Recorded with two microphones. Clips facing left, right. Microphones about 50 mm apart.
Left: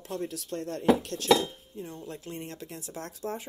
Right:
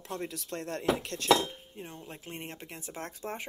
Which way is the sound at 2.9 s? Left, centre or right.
Right.